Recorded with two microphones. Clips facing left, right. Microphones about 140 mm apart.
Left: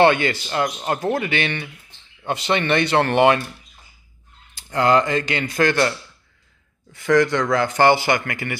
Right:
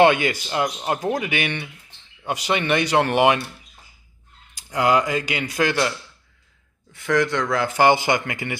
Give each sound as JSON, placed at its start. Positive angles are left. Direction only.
{"t": 0.0, "sound": "speech", "side_deg": -10}
{"t": 4.6, "sound": "speech", "side_deg": -10}
{"t": 7.9, "sound": "speech", "side_deg": -20}